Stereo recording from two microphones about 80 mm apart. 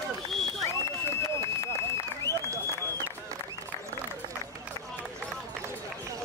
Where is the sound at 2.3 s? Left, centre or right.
Left.